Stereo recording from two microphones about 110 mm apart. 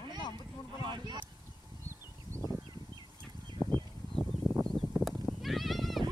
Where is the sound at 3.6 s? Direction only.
40° right (ahead or behind).